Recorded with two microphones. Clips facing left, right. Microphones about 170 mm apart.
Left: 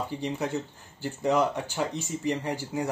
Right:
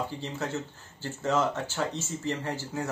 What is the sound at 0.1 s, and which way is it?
Speech, 15° left (ahead or behind).